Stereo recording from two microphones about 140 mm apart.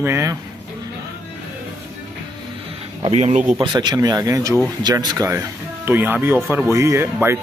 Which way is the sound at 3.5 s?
30° right (ahead or behind).